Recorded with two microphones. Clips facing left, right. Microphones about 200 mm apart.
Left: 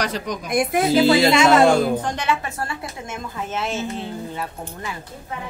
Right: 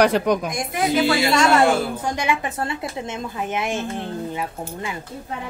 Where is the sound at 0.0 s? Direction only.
60° right (ahead or behind).